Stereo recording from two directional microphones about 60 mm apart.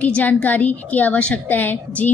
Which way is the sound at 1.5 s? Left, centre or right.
Left.